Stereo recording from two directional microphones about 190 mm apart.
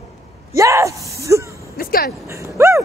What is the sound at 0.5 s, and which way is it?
Speech, 15° right (ahead or behind).